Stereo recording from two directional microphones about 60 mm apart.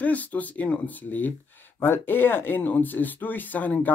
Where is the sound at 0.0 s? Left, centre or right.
Left.